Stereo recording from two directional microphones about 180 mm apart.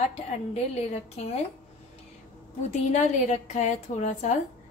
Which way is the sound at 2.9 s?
40° left (ahead or behind).